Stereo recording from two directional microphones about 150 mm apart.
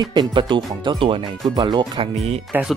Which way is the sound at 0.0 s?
30° right (ahead or behind).